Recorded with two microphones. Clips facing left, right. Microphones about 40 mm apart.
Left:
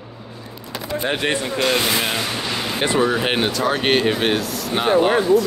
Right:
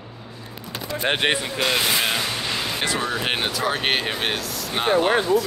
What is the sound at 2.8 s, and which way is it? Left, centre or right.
Speech, left.